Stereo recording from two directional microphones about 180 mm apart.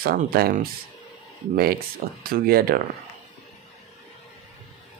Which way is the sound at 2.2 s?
55° right (ahead or behind).